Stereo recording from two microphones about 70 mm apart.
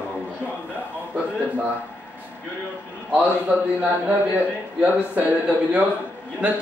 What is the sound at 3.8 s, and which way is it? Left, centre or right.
Speech, right.